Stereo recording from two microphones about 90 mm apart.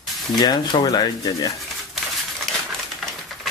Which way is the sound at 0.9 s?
40° left (ahead or behind).